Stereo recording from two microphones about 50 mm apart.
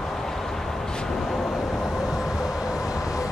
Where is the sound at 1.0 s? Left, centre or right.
Centre.